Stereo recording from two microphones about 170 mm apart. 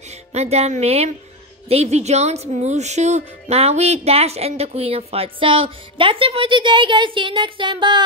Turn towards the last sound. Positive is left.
turn(degrees=-30)  # may be behind; listen again after turning